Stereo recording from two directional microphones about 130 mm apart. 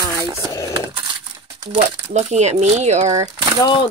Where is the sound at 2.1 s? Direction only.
60° right (ahead or behind).